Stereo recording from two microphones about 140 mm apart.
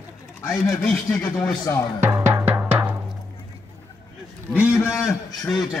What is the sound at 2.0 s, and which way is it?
Drum, 20° right (ahead or behind).